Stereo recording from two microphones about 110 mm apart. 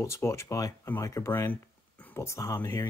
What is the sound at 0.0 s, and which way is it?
Speech, 25° left (ahead or behind).